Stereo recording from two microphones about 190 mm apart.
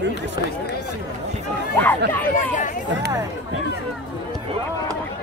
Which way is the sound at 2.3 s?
40° left (ahead or behind).